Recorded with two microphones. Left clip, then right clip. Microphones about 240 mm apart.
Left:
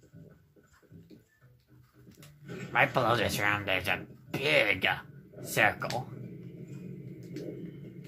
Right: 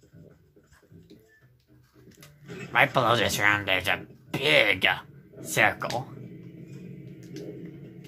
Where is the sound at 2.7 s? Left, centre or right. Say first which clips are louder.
Right 4 dB; centre.